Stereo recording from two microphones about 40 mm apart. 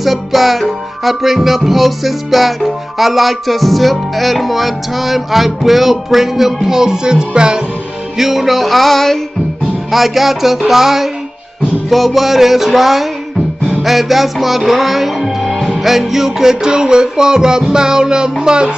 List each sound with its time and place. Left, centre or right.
0.0 s music: centre; by 7.6 s right
8.2 s music: centre
9.8 s music: centre